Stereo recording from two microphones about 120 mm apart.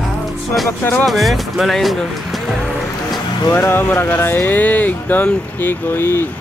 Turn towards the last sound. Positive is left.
turn(degrees=20)  # may be behind; listen again after turning